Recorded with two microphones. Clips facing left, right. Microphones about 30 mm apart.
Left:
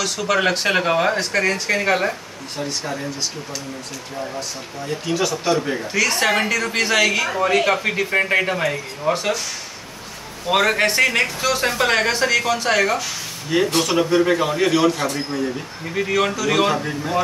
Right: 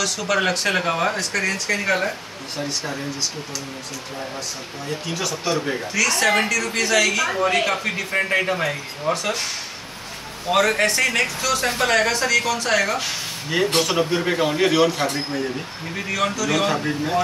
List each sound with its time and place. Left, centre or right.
0.0 s speech: centre
4.8 s a man's voice: centre
5.9 s speech: centre
7.3 s speech: centre
10.5 s speech: centre
13.5 s a man's voice: centre
15.9 s speech: centre
16.7 s a man's voice: centre